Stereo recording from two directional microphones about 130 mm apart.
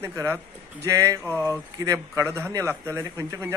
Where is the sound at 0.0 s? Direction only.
20° right (ahead or behind).